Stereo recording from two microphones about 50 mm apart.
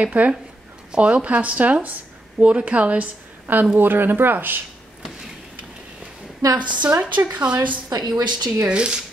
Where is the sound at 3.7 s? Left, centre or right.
Right.